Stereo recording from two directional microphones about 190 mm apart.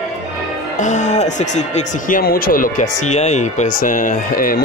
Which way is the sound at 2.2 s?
50° left (ahead or behind).